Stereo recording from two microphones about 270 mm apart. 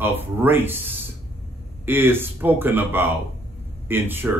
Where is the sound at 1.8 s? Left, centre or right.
Centre.